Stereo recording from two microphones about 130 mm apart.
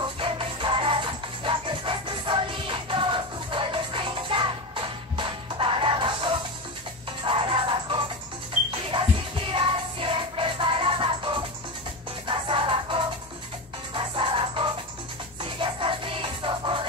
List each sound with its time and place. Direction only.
0.0 s music: 40° right (ahead or behind)
9.5 s music: 40° right (ahead or behind)